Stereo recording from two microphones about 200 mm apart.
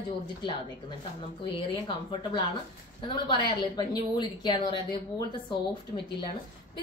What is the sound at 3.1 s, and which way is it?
A woman's voice, 20° left (ahead or behind).